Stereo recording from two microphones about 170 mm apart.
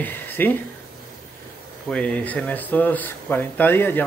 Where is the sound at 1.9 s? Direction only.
5° left (ahead or behind).